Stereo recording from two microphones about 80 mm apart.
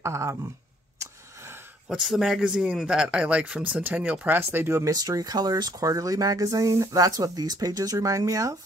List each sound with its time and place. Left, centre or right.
0.0 s speech: right
1.9 s a man's voice: centre
4.4 s speech: right
4.9 s speech: right